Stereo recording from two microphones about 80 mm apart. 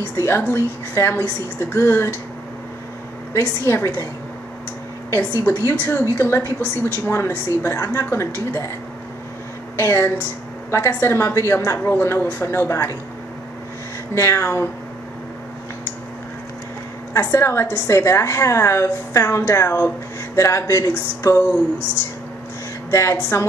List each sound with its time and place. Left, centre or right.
0.0 s a woman's voice: left
3.3 s a woman's voice: left
5.7 s a woman's voice: left
9.8 s a woman's voice: left
14.1 s a woman's voice: left
17.1 s a woman's voice: left
22.8 s speech: left